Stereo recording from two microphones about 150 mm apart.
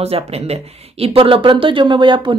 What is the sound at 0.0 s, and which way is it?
Speech, 45° right (ahead or behind).